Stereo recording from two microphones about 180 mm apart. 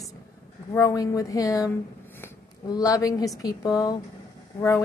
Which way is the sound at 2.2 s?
20° left (ahead or behind).